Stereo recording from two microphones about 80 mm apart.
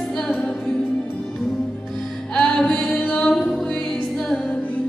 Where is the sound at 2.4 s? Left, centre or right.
Centre.